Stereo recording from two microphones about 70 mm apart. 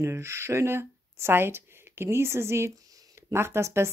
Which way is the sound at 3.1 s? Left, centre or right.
Right.